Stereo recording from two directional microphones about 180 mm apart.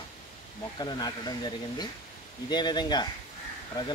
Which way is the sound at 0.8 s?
20° left (ahead or behind).